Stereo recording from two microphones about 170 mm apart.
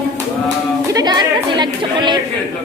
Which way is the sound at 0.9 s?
25° right (ahead or behind).